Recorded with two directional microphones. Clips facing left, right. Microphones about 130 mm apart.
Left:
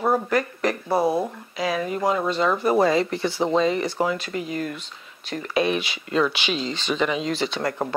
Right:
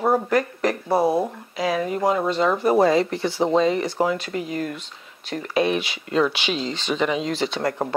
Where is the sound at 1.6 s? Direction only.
40° right (ahead or behind).